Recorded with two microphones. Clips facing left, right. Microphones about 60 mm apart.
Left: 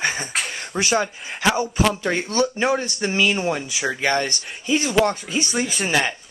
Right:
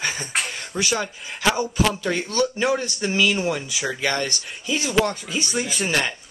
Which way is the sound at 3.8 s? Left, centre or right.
Centre.